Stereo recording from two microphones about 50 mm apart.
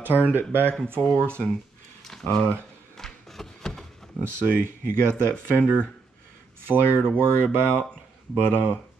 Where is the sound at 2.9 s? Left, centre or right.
Centre.